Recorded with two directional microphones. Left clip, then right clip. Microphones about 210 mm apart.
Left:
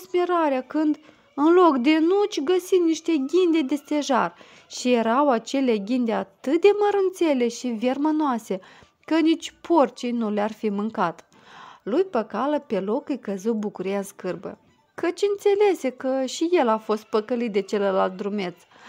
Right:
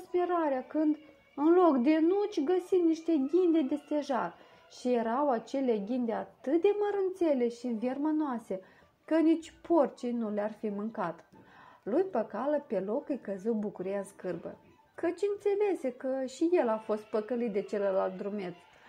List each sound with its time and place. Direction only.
0.1 s a woman's voice: 25° left (ahead or behind)